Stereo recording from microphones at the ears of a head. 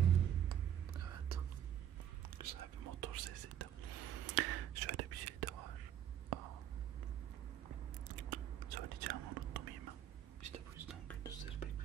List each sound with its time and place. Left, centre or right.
0.0 s whispering: right
7.6 s chewing: right
10.4 s whispering: right